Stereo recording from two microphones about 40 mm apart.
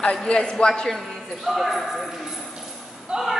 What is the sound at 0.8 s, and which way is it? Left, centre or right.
Speech, centre.